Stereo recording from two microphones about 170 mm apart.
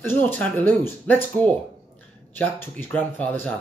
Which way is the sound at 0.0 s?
10° left (ahead or behind).